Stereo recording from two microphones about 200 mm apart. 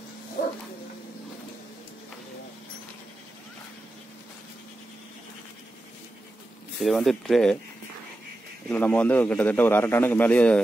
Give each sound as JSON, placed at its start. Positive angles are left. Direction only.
{"t": 0.4, "sound": "dog", "side_deg": 45}
{"t": 6.8, "sound": "speech", "side_deg": 0}
{"t": 8.6, "sound": "a man's voice", "side_deg": 5}